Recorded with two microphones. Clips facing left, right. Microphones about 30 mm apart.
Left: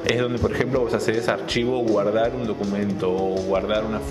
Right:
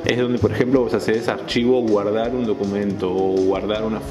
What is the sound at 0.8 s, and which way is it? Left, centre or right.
Speech, right.